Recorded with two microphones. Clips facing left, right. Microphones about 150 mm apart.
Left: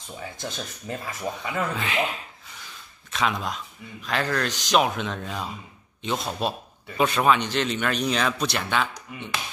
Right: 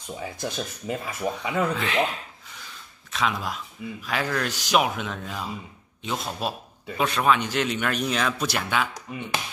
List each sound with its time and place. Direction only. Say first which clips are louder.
0.2 s speech: right 3 dB; 15° right (ahead or behind)
1.5 s speech: right 2 dB; centre (ahead or behind)
3.1 s speech: left 1 dB; centre (ahead or behind)
9.1 s speech: right 4 dB; 25° right (ahead or behind)